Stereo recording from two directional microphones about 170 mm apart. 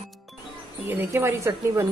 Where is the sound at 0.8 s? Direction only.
15° right (ahead or behind).